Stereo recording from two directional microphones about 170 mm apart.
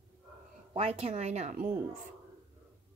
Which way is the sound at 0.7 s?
35° right (ahead or behind).